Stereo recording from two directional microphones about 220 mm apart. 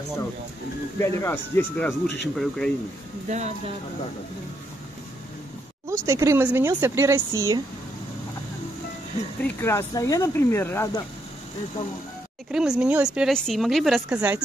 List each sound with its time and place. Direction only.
0.9 s speech: 10° left (ahead or behind)
3.3 s speech: 30° right (ahead or behind)
5.9 s speech: 15° right (ahead or behind)
9.4 s speech: 10° left (ahead or behind)
12.4 s speech: 5° right (ahead or behind)